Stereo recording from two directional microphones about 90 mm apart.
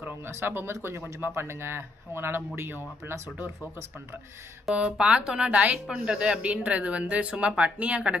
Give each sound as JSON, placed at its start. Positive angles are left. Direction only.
{"t": 0.0, "sound": "speech", "side_deg": -25}
{"t": 4.6, "sound": "speech", "side_deg": -10}